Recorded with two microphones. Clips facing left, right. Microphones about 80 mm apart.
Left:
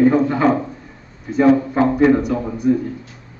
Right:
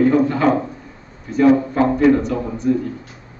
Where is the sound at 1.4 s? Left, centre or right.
Centre.